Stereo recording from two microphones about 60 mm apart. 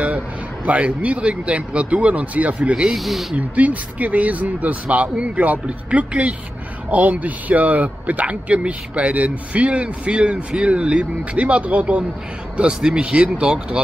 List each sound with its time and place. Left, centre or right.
0.7 s speech: right
2.9 s speech: centre
3.3 s speech: right